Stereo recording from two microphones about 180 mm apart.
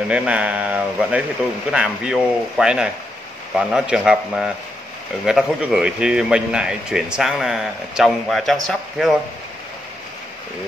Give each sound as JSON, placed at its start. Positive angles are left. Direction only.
{"t": 0.1, "sound": "speech", "side_deg": -5}